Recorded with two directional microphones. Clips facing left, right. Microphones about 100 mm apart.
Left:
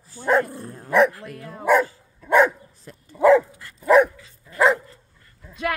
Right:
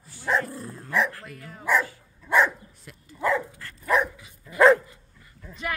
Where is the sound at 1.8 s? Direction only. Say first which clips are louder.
Left 4 dB; 45° left (ahead or behind).